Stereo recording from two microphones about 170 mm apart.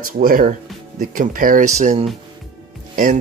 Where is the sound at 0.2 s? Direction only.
55° right (ahead or behind).